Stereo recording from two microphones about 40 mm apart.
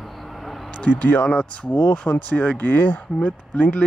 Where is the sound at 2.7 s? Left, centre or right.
Left.